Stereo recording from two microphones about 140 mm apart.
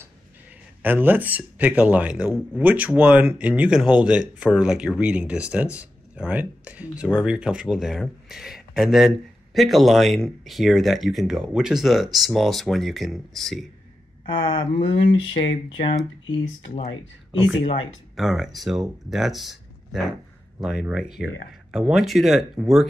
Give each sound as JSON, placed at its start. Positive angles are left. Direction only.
{"t": 0.8, "sound": "speech", "side_deg": -15}
{"t": 14.2, "sound": "speech", "side_deg": 35}
{"t": 18.1, "sound": "speech", "side_deg": 0}